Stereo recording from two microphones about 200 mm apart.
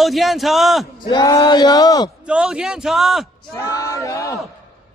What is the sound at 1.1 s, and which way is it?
Speech, 20° left (ahead or behind).